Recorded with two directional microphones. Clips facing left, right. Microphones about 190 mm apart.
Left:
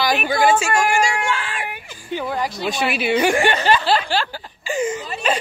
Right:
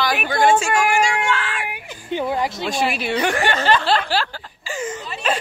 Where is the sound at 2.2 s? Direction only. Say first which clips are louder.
Right 1 dB; 25° right (ahead or behind).